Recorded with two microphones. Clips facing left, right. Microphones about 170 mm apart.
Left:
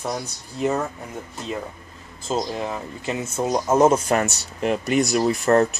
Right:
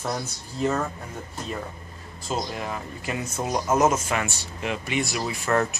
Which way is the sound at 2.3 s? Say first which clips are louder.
Left 4 dB; 30° left (ahead or behind).